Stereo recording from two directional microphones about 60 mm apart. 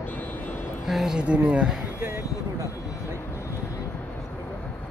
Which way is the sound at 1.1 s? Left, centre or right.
Right.